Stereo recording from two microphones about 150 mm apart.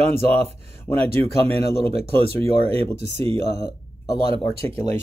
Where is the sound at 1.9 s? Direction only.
40° right (ahead or behind).